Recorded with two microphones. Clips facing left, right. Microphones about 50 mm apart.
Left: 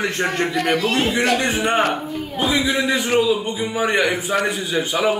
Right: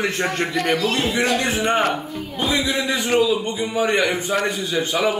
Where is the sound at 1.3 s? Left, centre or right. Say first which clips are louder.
Left 1 dB; centre.